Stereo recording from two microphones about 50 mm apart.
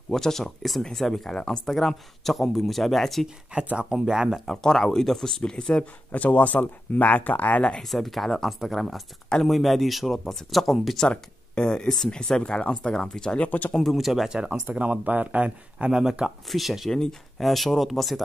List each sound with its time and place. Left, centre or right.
0.1 s speech: centre
3.5 s speech: right
4.5 s speech: centre
6.1 s speech: left
7.8 s speech: centre
11.1 s speech: centre
13.4 s speech: left
13.7 s speech: centre
14.3 s speech: centre
14.7 s speech: right
15.8 s speech: centre
16.4 s speech: centre